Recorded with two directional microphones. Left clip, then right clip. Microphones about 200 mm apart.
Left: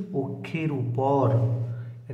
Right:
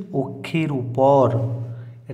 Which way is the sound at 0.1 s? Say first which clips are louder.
Right 7 dB; 40° right (ahead or behind).